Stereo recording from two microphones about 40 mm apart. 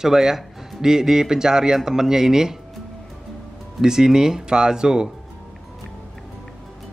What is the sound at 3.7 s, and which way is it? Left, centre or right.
Speech, centre.